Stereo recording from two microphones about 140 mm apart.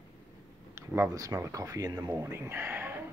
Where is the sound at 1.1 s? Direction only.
25° right (ahead or behind).